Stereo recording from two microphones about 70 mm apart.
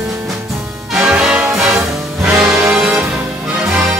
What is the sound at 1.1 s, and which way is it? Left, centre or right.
Music, centre.